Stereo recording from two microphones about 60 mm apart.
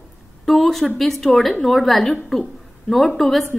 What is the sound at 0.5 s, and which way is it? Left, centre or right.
A woman's voice, centre.